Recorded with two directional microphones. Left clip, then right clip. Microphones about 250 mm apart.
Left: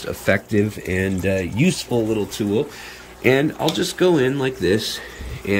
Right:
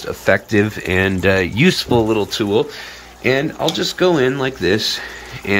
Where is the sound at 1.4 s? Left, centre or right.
Centre.